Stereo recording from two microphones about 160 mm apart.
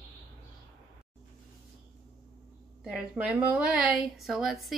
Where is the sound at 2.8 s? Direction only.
5° right (ahead or behind).